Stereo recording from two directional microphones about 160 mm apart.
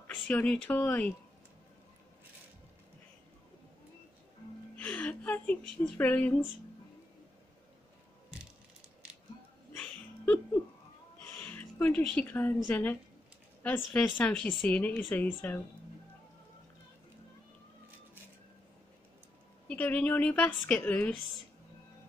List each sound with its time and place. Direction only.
0.2 s speech: 5° left (ahead or behind)
4.7 s a sound: 10° left (ahead or behind)
9.7 s music: 10° left (ahead or behind)
11.2 s a woman's voice: 10° left (ahead or behind)
19.7 s speech: 10° left (ahead or behind)